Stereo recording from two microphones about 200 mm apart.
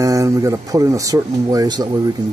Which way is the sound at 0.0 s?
15° right (ahead or behind).